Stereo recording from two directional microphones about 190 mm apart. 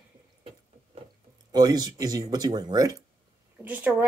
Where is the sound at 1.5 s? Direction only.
20° right (ahead or behind).